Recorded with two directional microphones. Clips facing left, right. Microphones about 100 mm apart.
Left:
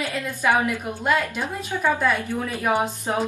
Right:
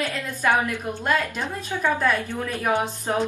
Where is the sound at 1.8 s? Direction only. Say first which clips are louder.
Left 1 dB; 15° left (ahead or behind).